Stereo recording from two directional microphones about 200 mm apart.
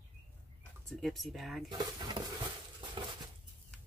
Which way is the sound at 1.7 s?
20° right (ahead or behind).